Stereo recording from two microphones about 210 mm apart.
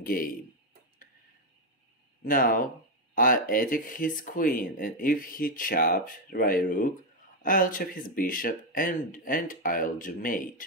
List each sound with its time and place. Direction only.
0.0 s speech: 45° left (ahead or behind)
2.2 s speech: 40° left (ahead or behind)